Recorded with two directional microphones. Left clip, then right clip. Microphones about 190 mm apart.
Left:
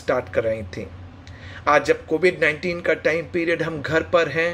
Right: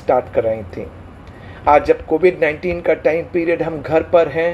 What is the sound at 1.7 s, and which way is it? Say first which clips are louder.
Speech: right 5 dB; 20° left (ahead or behind).